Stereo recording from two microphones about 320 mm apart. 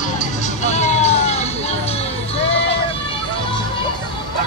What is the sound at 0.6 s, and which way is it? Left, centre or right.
Music, left.